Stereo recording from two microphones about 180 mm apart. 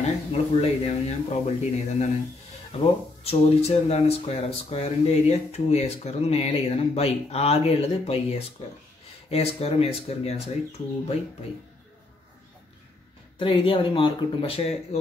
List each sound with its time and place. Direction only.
0.3 s speech: 35° left (ahead or behind)
13.4 s speech: 30° left (ahead or behind)